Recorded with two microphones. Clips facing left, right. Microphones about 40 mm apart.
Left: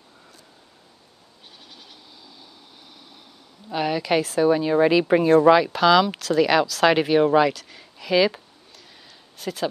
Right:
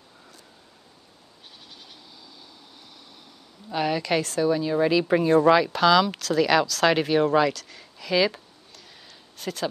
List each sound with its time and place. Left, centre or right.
3.6 s speech: centre
4.5 s speech: left
9.4 s speech: centre